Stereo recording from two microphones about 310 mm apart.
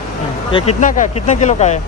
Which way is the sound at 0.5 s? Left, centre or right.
Left.